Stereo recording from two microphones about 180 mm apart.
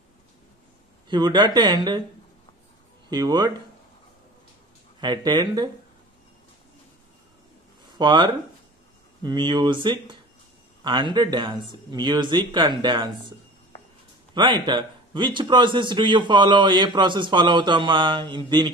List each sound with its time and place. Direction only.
1.0 s a man's voice: 25° right (ahead or behind)
3.1 s a man's voice: 20° right (ahead or behind)
5.0 s a man's voice: 25° right (ahead or behind)
8.0 s a man's voice: 25° right (ahead or behind)
14.3 s a man's voice: 25° right (ahead or behind)